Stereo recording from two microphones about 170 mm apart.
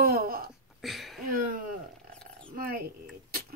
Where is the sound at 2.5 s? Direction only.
60° right (ahead or behind).